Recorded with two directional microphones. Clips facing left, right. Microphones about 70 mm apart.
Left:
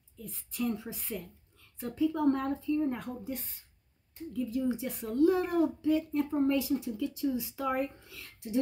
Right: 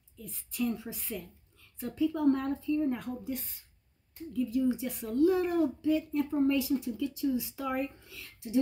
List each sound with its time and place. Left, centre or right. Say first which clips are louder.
0.5 s speech: right 1 dB; left
4.5 s speech: right 2 dB; left